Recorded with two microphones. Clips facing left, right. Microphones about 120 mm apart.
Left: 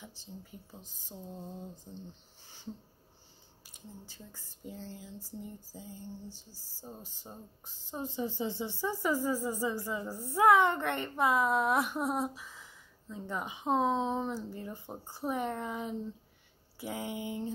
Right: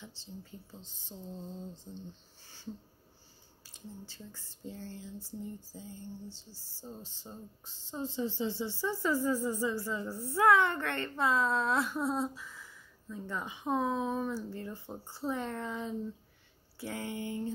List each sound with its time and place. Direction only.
0.0 s speech: 15° left (ahead or behind)
4.1 s speech: 15° left (ahead or behind)